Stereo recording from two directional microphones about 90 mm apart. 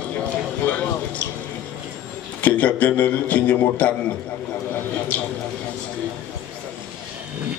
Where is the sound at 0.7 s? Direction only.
15° left (ahead or behind).